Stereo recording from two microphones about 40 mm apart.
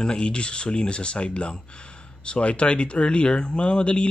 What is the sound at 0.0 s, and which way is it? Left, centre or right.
Speech, left.